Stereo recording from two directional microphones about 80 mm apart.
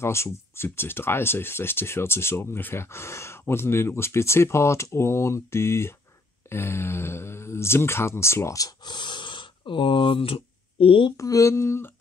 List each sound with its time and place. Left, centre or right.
0.0 s speech: left
8.8 s speech: left
11.1 s speech: left